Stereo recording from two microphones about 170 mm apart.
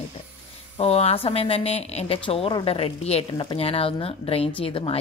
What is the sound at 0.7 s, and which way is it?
A woman's voice, 40° left (ahead or behind).